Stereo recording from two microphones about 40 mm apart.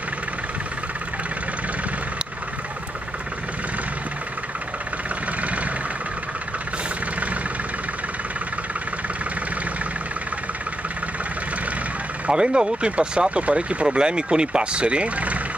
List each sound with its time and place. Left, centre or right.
12.3 s speech: right